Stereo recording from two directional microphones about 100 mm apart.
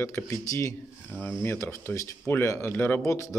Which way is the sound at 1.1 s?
15° left (ahead or behind).